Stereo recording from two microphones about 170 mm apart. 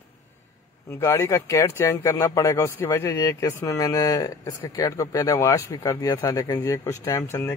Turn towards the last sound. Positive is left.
turn(degrees=15)  # may be behind; listen again after turning